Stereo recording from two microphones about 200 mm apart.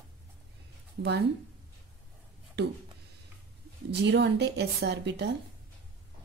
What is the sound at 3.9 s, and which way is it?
A woman's voice, 60° right (ahead or behind).